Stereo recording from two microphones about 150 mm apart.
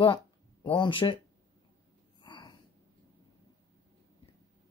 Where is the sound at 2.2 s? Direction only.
30° left (ahead or behind).